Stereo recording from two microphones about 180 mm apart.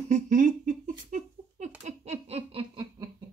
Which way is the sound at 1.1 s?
40° right (ahead or behind).